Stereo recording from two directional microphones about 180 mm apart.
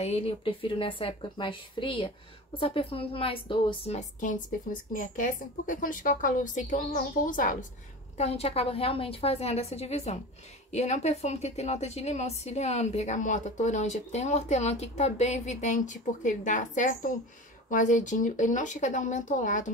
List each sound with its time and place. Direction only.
0.0 s a woman's voice: 35° left (ahead or behind)
8.2 s a woman's voice: 35° left (ahead or behind)